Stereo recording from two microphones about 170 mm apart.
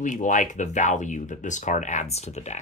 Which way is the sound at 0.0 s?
50° left (ahead or behind).